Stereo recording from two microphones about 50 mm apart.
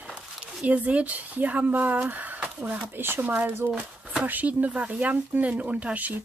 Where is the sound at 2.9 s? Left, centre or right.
Right.